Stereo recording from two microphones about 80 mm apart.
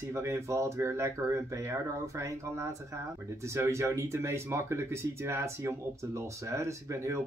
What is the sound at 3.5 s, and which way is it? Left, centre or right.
Speech, right.